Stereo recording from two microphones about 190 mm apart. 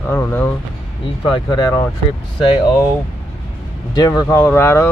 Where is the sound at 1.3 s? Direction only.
20° left (ahead or behind).